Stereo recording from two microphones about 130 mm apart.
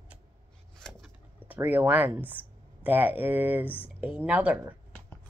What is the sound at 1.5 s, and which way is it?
Speech, 10° right (ahead or behind).